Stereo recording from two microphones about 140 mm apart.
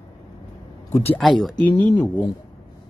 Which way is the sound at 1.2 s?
Centre (ahead or behind).